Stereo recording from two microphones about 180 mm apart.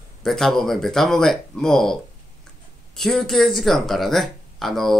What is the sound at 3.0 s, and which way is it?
Speech, centre (ahead or behind).